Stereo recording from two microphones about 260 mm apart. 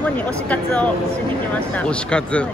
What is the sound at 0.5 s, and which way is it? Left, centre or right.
Speech, centre.